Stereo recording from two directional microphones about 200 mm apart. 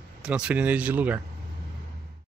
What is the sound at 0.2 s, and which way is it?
Speech, 5° right (ahead or behind).